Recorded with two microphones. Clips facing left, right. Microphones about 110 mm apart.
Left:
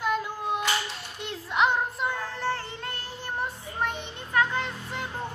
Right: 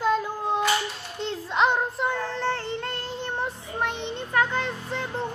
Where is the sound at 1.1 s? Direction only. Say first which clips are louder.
Right 2 dB; 20° right (ahead or behind).